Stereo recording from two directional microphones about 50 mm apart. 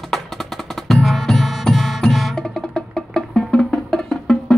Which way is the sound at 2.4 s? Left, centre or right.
Centre.